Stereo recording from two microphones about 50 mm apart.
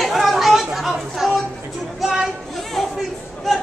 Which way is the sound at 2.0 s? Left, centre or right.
Centre.